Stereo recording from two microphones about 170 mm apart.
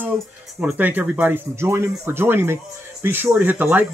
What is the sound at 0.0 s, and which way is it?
Speech, 5° right (ahead or behind).